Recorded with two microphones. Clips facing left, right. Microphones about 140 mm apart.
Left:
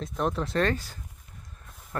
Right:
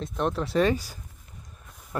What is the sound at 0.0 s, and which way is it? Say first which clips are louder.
Speech: right 1 dB; centre (ahead or behind).